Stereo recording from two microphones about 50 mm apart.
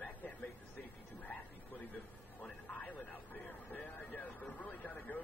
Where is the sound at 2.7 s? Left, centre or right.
Left.